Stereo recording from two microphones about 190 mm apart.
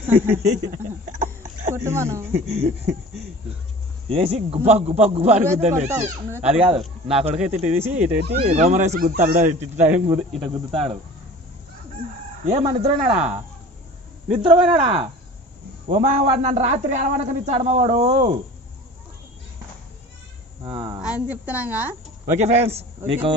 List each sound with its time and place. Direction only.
0.0 s a woman's voice: 10° right (ahead or behind)
0.4 s speech: 40° right (ahead or behind)
1.8 s a woman's voice: 15° right (ahead or behind)
2.3 s a man's voice: 35° right (ahead or behind)
4.1 s a man's voice: 30° right (ahead or behind)
7.8 s a woman's voice: 10° right (ahead or behind)
8.4 s a man's voice: 35° right (ahead or behind)
10.4 s speech: 25° right (ahead or behind)
12.4 s a man's voice: 30° right (ahead or behind)
14.4 s a man's voice: 25° right (ahead or behind)
20.6 s speech: 25° right (ahead or behind)
21.0 s a woman's voice: 5° right (ahead or behind)
22.2 s a man's voice: 35° right (ahead or behind)